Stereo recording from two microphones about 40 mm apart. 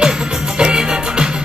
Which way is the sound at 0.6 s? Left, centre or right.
Right.